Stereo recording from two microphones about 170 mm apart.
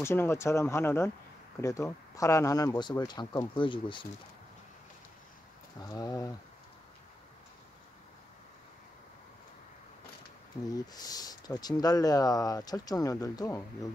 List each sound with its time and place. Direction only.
0.0 s speech: 15° left (ahead or behind)
5.8 s speech: 20° left (ahead or behind)
10.7 s speech: 20° left (ahead or behind)